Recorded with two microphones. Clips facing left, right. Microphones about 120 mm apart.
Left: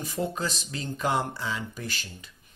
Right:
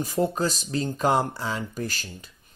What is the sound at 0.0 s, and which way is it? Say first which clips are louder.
Speech: right 6 dB; 40° right (ahead or behind).